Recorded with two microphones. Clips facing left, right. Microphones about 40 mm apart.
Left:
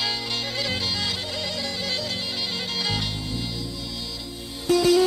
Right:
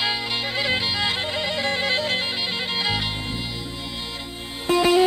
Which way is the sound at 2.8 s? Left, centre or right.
Right.